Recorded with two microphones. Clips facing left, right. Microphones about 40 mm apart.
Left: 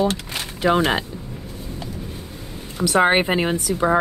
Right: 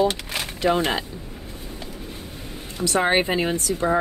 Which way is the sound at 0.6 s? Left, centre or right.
Left.